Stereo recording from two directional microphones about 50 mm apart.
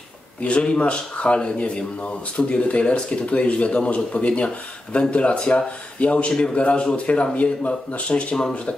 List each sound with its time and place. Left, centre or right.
0.4 s speech: left